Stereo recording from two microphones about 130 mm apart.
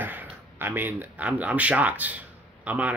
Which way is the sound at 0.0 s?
15° right (ahead or behind).